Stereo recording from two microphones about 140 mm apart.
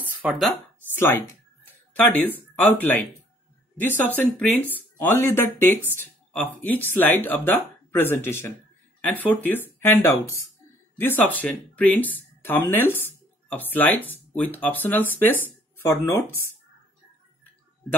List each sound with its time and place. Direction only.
0.2 s speech: 10° right (ahead or behind)
0.9 s speech: 15° left (ahead or behind)